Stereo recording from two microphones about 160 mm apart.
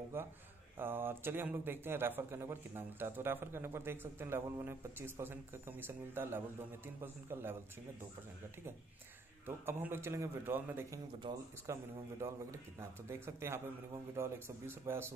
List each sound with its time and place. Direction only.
0.1 s speech: 15° right (ahead or behind)
9.7 s speech: 15° right (ahead or behind)
11.3 s speech: 30° right (ahead or behind)
11.6 s speech: 20° right (ahead or behind)